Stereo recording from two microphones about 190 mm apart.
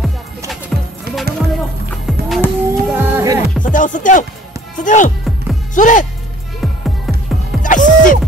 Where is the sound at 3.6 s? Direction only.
45° left (ahead or behind).